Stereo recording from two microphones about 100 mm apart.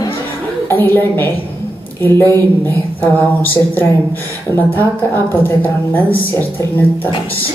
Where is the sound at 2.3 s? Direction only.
20° left (ahead or behind).